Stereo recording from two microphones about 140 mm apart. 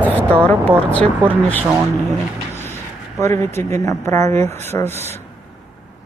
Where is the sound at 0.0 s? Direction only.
10° left (ahead or behind).